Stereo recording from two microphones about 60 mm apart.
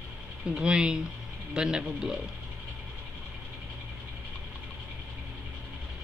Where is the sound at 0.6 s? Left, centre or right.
Centre.